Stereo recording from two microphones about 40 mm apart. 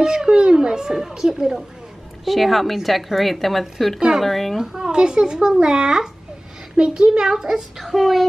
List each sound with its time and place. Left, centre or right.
0.0 s a child's voice: centre
2.2 s a woman's voice: centre
4.7 s a woman's voice: centre